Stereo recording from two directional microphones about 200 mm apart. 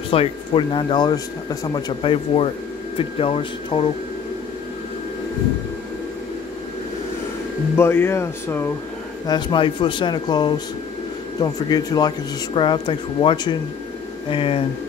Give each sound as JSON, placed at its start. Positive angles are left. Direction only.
{"t": 0.1, "sound": "speech", "side_deg": 25}
{"t": 7.7, "sound": "speech", "side_deg": 10}